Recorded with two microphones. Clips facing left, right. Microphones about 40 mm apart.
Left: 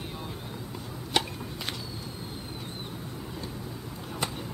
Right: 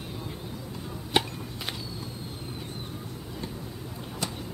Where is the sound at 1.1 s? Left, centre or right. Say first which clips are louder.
Right 2 dB; right.